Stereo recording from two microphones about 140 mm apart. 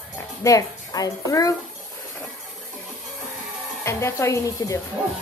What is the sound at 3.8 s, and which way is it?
Speech, 20° left (ahead or behind).